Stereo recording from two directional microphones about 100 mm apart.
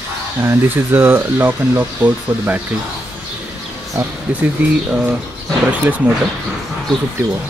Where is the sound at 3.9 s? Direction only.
15° right (ahead or behind).